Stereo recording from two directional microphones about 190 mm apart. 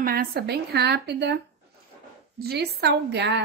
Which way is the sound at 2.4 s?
55° right (ahead or behind).